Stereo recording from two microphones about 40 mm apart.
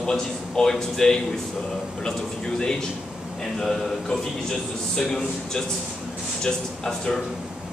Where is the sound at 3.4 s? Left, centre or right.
Centre.